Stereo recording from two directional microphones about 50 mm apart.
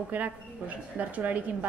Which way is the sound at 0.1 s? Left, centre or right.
Right.